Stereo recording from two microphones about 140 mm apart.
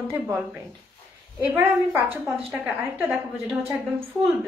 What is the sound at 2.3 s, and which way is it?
A woman's voice, 10° right (ahead or behind).